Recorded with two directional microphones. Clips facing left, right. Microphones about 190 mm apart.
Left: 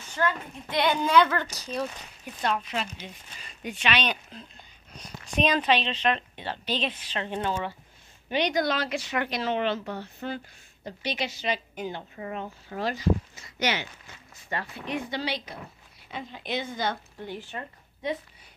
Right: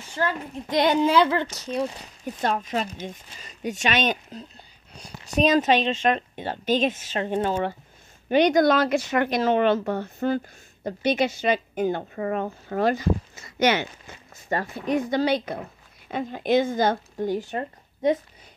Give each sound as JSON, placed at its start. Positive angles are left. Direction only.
{"t": 0.1, "sound": "speech", "side_deg": -30}
{"t": 2.2, "sound": "speech", "side_deg": -45}